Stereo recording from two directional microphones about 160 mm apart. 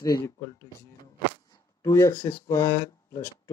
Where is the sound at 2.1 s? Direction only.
30° left (ahead or behind).